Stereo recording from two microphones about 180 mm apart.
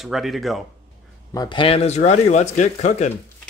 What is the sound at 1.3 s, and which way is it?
Speech, 25° left (ahead or behind).